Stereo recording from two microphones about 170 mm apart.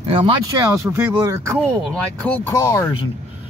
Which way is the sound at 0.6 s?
15° right (ahead or behind).